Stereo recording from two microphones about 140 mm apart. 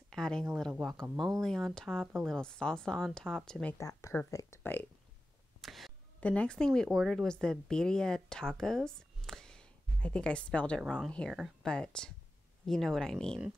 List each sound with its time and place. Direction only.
0.1 s speech: 5° left (ahead or behind)
3.7 s speech: 25° left (ahead or behind)
5.6 s speech: centre (ahead or behind)